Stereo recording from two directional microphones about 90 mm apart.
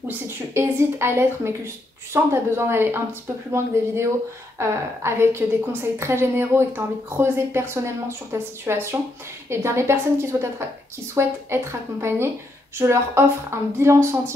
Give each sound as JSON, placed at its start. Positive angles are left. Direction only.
{"t": 0.3, "sound": "a woman's voice", "side_deg": -30}